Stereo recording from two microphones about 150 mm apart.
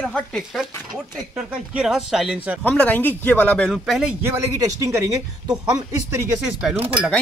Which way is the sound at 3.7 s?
Centre (ahead or behind).